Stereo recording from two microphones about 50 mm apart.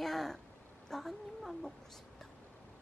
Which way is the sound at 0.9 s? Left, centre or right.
Centre.